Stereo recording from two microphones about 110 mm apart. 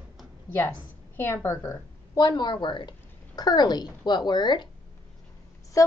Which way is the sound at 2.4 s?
45° left (ahead or behind).